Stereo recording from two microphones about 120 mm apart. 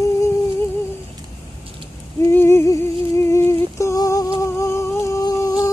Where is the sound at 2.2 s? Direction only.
20° left (ahead or behind).